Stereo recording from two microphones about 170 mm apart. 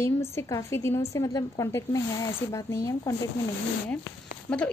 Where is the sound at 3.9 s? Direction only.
10° left (ahead or behind).